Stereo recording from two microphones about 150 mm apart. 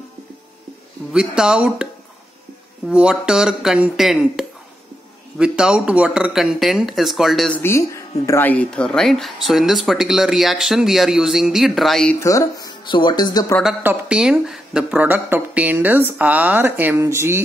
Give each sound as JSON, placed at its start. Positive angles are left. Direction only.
{"t": 1.1, "sound": "speech", "side_deg": -5}
{"t": 2.9, "sound": "speech", "side_deg": -5}
{"t": 7.6, "sound": "speech", "side_deg": 20}
{"t": 12.2, "sound": "speech", "side_deg": 20}
{"t": 13.8, "sound": "speech", "side_deg": -5}